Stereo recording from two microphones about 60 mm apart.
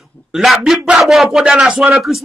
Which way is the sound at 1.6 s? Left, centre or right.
Right.